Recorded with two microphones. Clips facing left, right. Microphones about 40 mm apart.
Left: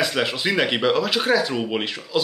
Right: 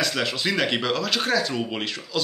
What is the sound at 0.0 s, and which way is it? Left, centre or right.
Speech, centre.